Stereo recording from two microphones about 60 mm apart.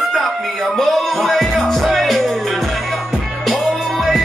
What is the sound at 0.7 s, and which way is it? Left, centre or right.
Music, centre.